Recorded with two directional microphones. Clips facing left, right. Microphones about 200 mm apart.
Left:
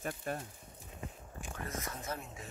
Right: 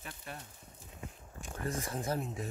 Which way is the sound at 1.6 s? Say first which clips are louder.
Right 6 dB; 30° right (ahead or behind).